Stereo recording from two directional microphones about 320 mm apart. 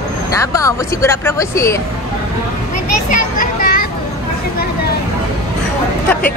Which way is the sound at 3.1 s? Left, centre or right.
Left.